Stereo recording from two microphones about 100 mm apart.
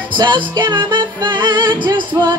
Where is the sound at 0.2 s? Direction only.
50° right (ahead or behind).